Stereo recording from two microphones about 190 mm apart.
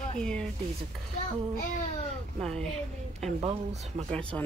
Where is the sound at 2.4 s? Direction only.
5° left (ahead or behind).